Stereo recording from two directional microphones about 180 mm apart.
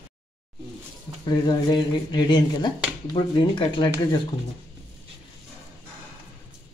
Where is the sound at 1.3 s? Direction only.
25° left (ahead or behind).